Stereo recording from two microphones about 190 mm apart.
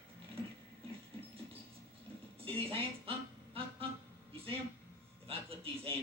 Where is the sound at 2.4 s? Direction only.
30° right (ahead or behind).